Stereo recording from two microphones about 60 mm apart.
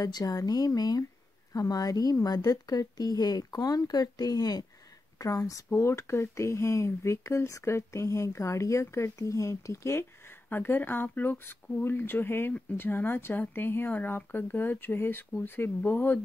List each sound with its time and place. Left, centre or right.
0.0 s speech: left
5.2 s speech: left
10.2 s speech: left